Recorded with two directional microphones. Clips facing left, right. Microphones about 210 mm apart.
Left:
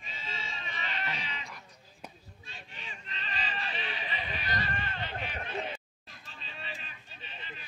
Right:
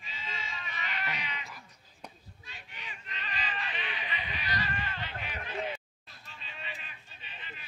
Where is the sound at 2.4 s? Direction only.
30° left (ahead or behind).